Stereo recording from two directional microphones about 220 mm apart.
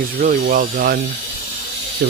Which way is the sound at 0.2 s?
40° right (ahead or behind).